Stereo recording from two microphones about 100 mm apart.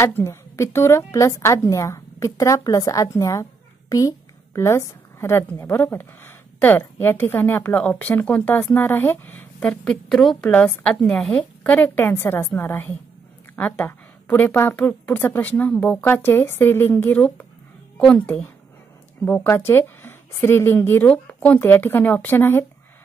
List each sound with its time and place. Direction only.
0.0 s a woman's voice: 30° left (ahead or behind)
4.6 s a woman's voice: 30° left (ahead or behind)
9.6 s a woman's voice: 10° left (ahead or behind); by 22.7 s 25° left (ahead or behind)